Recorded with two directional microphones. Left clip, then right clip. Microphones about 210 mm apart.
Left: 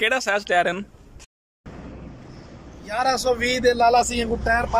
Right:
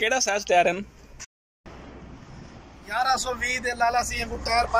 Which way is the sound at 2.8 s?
35° left (ahead or behind).